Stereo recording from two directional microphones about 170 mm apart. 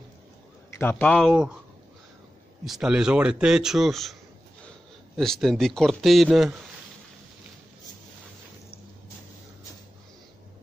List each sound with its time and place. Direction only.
0.7 s a man's voice: 10° left (ahead or behind)
1.3 s a man's voice: 5° right (ahead or behind)
2.6 s a man's voice: 5° right (ahead or behind)